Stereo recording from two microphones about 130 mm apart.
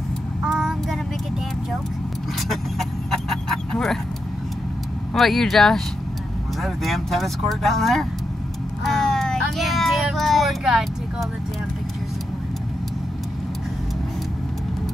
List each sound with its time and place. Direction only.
0.5 s child singing: centre (ahead or behind)
2.5 s vehicle: centre (ahead or behind)
5.1 s speech: centre (ahead or behind)
8.8 s vehicle: 5° left (ahead or behind)